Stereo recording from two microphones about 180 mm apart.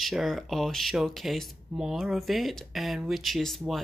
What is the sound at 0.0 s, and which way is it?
Speech, centre (ahead or behind).